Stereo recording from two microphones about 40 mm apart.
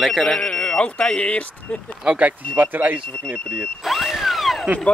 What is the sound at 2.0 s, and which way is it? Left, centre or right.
Speech, right.